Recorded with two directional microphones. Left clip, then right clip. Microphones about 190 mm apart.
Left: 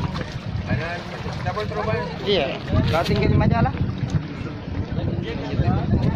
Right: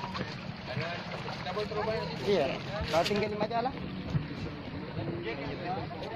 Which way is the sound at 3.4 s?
45° right (ahead or behind).